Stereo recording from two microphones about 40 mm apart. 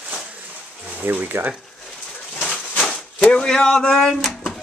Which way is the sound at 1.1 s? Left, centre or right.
Right.